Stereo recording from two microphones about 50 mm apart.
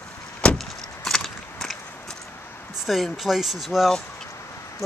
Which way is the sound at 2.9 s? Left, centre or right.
Centre.